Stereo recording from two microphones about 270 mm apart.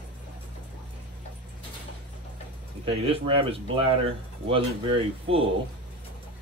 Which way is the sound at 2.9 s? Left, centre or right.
Right.